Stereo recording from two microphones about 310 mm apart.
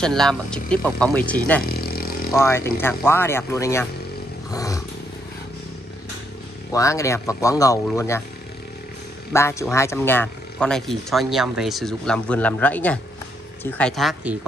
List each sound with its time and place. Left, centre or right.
0.0 s speech: centre
1.6 s a sound: left
2.3 s speech: centre
4.5 s roaring cats: centre
6.7 s speech: centre
9.3 s speech: centre